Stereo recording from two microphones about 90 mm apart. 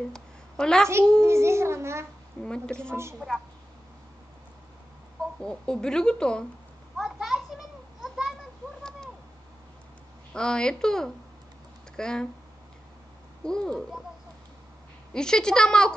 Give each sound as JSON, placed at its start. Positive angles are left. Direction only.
{"t": 0.1, "sound": "a sound", "side_deg": 10}
{"t": 1.2, "sound": "a child's voice", "side_deg": -30}
{"t": 2.4, "sound": "a woman's voice", "side_deg": 10}
{"t": 5.4, "sound": "speech", "side_deg": 10}
{"t": 7.0, "sound": "children playing", "side_deg": -5}
{"t": 10.3, "sound": "speech", "side_deg": 10}
{"t": 13.4, "sound": "speech", "side_deg": 10}
{"t": 15.1, "sound": "speech", "side_deg": 10}